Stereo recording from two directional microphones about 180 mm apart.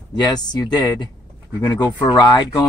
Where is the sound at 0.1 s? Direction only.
20° left (ahead or behind).